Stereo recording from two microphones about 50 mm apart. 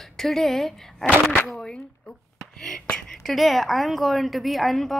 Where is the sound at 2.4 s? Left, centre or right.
Centre.